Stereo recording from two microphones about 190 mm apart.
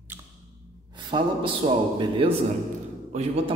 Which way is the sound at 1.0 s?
25° right (ahead or behind).